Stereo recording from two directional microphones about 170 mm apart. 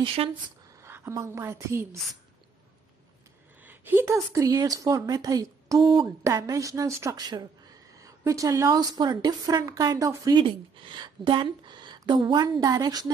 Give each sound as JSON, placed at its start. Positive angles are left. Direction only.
{"t": 0.0, "sound": "speech", "side_deg": -30}
{"t": 0.8, "sound": "a woman's voice", "side_deg": -15}
{"t": 3.6, "sound": "a woman's voice", "side_deg": -15}